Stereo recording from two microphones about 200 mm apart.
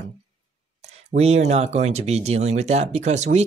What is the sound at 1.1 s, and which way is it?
Speech, 35° right (ahead or behind).